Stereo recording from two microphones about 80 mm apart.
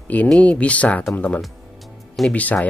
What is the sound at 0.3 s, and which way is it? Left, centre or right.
Speech, centre.